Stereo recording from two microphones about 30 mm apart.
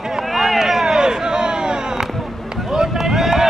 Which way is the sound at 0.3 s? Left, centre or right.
Centre.